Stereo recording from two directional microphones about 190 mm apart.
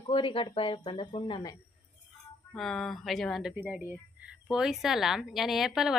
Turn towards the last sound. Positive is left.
turn(degrees=0)  # may be behind; listen again after turning